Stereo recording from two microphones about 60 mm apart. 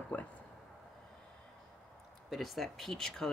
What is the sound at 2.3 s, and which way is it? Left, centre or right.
Speech, centre.